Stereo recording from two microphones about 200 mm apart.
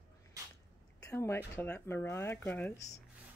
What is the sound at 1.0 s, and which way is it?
Speech, 10° left (ahead or behind).